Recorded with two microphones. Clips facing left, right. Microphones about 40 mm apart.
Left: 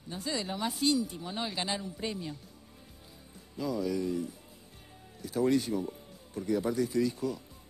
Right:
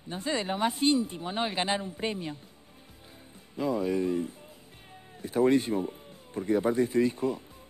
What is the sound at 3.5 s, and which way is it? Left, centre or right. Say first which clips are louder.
Speech: right 4 dB; right.